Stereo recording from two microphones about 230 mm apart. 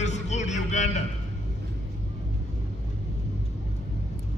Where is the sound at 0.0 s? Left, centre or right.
Left.